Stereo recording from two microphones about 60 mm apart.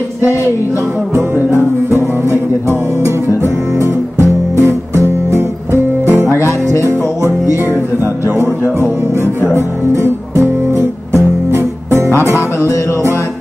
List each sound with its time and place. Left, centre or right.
2.0 s music: right
3.0 s music: right
10.0 s music: right
12.1 s music: right